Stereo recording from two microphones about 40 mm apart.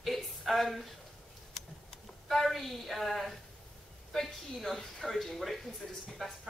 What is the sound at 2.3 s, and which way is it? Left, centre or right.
A woman's voice, centre.